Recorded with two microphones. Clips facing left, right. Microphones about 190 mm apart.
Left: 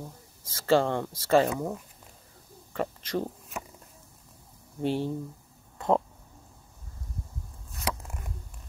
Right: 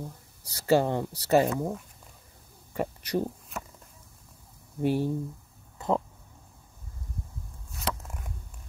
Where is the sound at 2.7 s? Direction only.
10° right (ahead or behind).